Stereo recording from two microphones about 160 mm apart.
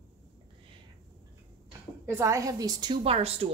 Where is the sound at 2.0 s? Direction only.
20° right (ahead or behind).